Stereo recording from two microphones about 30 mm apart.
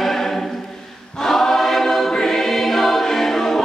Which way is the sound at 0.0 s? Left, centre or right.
Centre.